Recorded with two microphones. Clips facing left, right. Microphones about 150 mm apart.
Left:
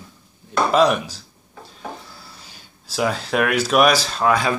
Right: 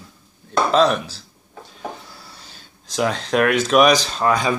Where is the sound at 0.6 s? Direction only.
10° left (ahead or behind).